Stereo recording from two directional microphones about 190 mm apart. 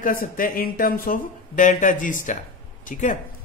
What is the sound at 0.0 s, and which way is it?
Speech, 50° left (ahead or behind).